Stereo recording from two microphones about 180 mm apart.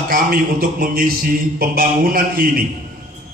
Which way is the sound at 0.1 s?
55° right (ahead or behind).